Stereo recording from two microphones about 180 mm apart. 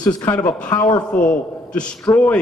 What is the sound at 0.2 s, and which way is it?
A man's voice, 10° left (ahead or behind).